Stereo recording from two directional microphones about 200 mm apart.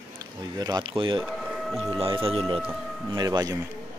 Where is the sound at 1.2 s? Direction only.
Centre (ahead or behind).